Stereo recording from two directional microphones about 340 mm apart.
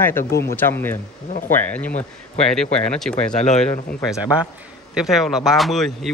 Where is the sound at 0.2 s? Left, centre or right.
Left.